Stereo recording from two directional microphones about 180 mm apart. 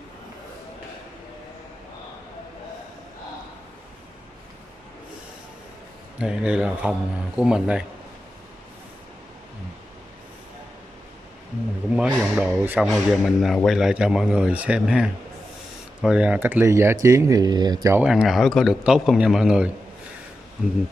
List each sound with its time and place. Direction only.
6.1 s a man's voice: 5° right (ahead or behind)
11.9 s a sound: 5° right (ahead or behind)
13.7 s a man's voice: centre (ahead or behind); by 18.0 s 20° right (ahead or behind)
18.0 s a man's voice: 5° right (ahead or behind)